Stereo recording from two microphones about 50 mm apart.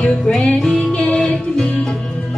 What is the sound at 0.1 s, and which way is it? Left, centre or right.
Music, centre.